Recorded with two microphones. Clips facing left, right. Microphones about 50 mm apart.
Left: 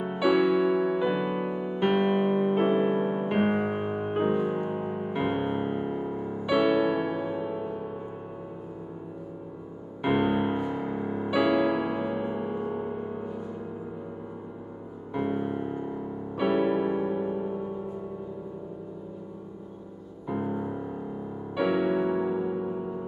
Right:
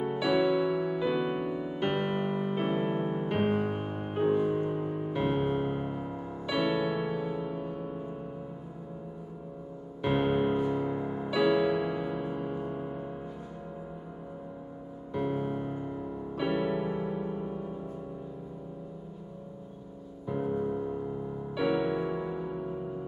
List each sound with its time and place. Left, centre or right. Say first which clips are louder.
0.0 s music: left 3 dB; centre
10.0 s music: left 2 dB; centre
15.1 s piano: left 2 dB; centre
20.2 s music: even; centre